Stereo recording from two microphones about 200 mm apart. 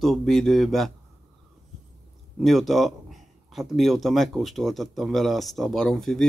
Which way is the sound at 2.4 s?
Centre (ahead or behind).